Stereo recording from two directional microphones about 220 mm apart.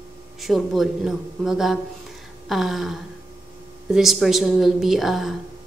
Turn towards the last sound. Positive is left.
turn(degrees=0)  # may be behind; listen again after turning